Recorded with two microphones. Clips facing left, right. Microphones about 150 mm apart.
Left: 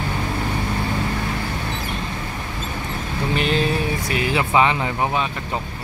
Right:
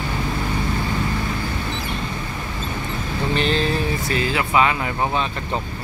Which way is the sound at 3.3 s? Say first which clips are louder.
Left 1 dB; 10° left (ahead or behind).